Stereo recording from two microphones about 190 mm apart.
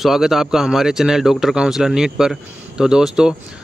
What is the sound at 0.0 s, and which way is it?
Speech, centre (ahead or behind).